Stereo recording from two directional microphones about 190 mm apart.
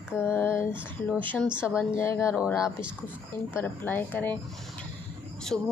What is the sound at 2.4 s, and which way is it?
A woman's voice, 15° left (ahead or behind).